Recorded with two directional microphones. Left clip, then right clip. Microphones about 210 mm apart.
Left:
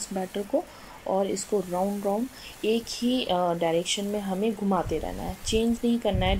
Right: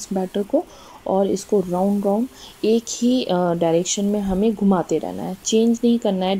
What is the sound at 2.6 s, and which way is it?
Speech, 15° right (ahead or behind).